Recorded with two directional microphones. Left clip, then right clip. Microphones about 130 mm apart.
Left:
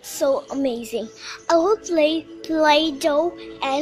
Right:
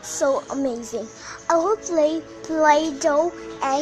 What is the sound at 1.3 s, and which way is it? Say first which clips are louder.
Speech: left 2 dB; 25° left (ahead or behind).